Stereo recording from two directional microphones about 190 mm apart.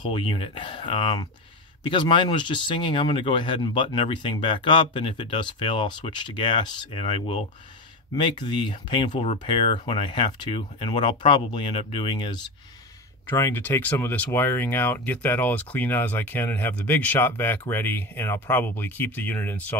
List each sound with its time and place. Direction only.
0.0 s speech: 25° left (ahead or behind)
13.3 s speech: 10° left (ahead or behind)